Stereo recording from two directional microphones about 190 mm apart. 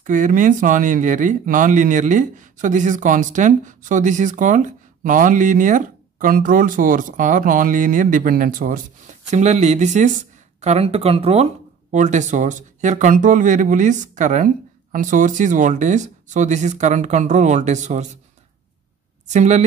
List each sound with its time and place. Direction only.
0.0 s speech: 45° right (ahead or behind)
19.2 s a woman's voice: 40° right (ahead or behind)